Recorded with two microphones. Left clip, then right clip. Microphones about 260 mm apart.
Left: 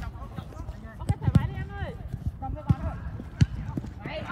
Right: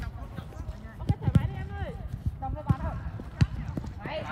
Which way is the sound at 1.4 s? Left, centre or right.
Left.